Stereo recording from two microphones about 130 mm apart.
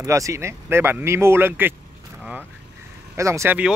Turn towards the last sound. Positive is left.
turn(degrees=-20)  # may be behind; listen again after turning